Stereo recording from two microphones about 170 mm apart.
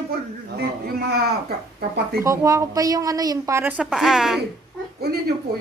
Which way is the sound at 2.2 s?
20° right (ahead or behind).